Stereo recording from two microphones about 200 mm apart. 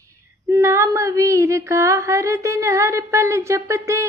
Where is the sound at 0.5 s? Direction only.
15° right (ahead or behind).